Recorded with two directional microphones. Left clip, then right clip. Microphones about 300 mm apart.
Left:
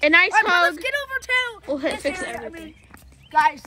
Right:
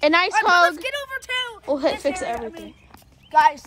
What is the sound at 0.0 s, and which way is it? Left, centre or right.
A woman's voice, centre.